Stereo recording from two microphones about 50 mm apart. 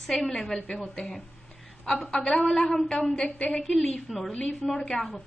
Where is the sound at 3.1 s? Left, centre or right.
Left.